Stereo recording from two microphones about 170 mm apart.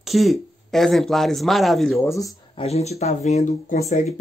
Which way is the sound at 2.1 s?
20° left (ahead or behind).